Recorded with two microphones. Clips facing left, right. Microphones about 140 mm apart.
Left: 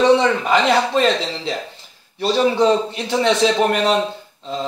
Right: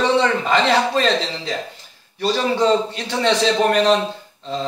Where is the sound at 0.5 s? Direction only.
15° left (ahead or behind).